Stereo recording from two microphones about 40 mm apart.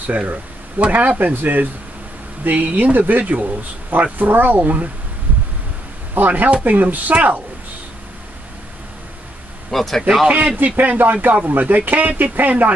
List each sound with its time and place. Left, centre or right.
0.0 s speech: right
6.1 s speech: right
9.7 s speech: centre
10.2 s speech: right